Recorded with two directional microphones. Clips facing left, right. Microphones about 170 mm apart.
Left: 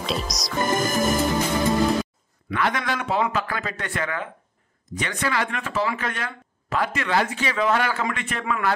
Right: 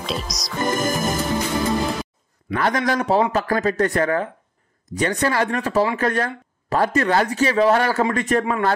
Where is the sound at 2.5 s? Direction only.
40° right (ahead or behind).